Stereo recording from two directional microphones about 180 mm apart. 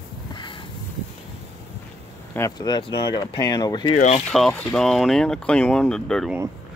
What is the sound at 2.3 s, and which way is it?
Speech, 20° left (ahead or behind).